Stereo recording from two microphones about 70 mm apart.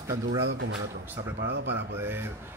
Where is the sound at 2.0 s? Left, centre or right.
Right.